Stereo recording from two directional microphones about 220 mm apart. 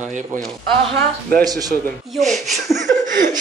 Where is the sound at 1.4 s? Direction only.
15° right (ahead or behind).